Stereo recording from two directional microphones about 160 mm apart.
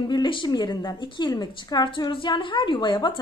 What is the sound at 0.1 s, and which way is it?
A woman's voice, 30° left (ahead or behind).